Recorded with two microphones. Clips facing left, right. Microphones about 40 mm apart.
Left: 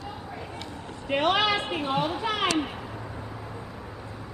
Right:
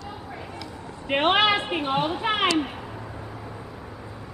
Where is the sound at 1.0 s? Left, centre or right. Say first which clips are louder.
Right 3 dB; right.